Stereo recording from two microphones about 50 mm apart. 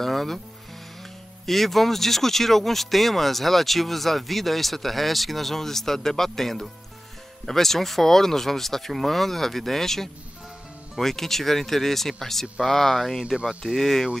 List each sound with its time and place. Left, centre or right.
0.0 s speech: centre
1.4 s speech: centre
13.5 s speech: centre
13.7 s speech: centre